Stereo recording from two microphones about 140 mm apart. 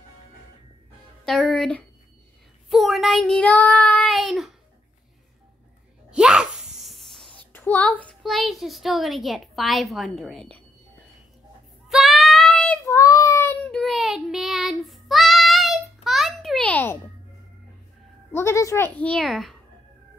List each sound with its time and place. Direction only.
1.2 s a woman's voice: centre (ahead or behind)
2.7 s child singing: centre (ahead or behind)
6.0 s a sound: 5° right (ahead or behind); by 8.2 s 10° left (ahead or behind)
8.2 s a woman's voice: centre (ahead or behind)
11.9 s child singing: centre (ahead or behind)
12.9 s child singing: 25° left (ahead or behind)
13.7 s child singing: 5° left (ahead or behind)
18.3 s speech: 20° left (ahead or behind)
18.9 s a woman's voice: 5° left (ahead or behind)